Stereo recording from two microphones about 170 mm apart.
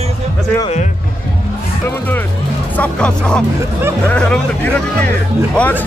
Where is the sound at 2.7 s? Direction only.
5° left (ahead or behind).